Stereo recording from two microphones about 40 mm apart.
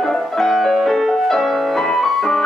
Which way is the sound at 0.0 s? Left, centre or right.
Centre.